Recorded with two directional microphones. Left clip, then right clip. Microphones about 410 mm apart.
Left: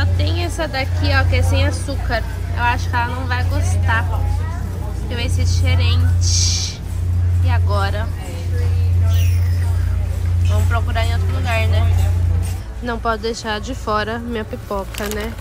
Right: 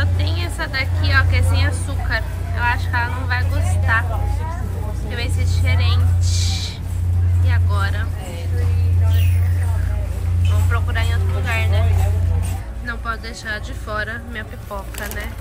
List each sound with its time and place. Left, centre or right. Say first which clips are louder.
0.0 s a woman's voice: left 2 dB; centre
5.1 s a woman's voice: left 3 dB; centre
10.7 s speech: left 2 dB; centre
12.8 s a woman's voice: left 7 dB; centre